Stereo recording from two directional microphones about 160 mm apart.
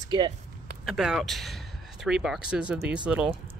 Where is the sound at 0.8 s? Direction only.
Centre (ahead or behind).